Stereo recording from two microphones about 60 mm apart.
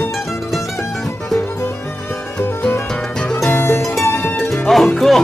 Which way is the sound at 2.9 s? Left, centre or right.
Centre.